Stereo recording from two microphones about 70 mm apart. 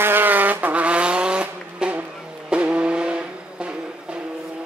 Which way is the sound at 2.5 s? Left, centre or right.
Centre.